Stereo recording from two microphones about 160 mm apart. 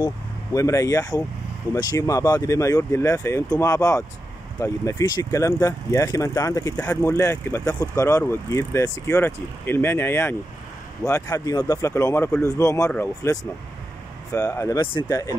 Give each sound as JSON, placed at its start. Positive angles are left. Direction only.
{"t": 0.0, "sound": "speech", "side_deg": 20}